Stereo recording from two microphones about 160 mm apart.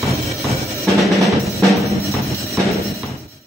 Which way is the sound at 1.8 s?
20° right (ahead or behind).